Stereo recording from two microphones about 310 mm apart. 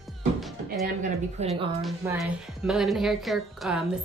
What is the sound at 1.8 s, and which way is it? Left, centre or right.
A woman's voice, centre.